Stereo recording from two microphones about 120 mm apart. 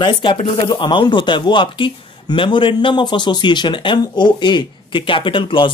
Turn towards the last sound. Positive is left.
turn(degrees=45)  # may be behind; listen again after turning